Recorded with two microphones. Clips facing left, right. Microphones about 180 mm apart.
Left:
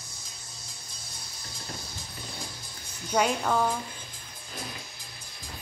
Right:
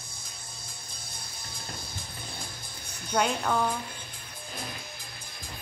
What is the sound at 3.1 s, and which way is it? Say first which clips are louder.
Speech: left 1 dB; 5° left (ahead or behind).